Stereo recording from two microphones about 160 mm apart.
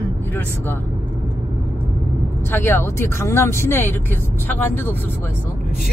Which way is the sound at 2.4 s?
15° left (ahead or behind).